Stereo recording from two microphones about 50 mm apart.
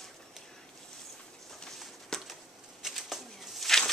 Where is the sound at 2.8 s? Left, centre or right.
Centre.